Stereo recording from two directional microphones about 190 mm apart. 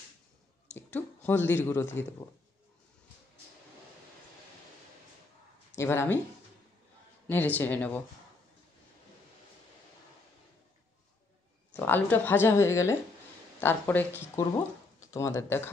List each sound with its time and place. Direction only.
0.7 s speech: 10° left (ahead or behind)
5.8 s speech: 15° left (ahead or behind)
7.2 s speech: 10° left (ahead or behind)
11.7 s speech: 10° left (ahead or behind)